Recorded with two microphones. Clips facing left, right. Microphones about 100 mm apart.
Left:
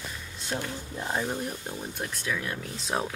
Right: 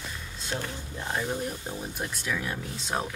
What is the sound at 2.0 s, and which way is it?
Speech, 10° right (ahead or behind).